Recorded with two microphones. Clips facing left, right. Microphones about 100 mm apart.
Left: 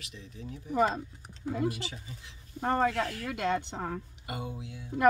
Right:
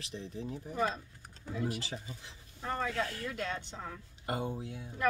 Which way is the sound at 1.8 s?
35° right (ahead or behind).